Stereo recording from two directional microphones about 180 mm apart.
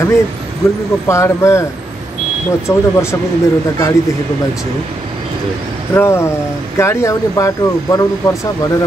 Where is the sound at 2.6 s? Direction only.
15° left (ahead or behind).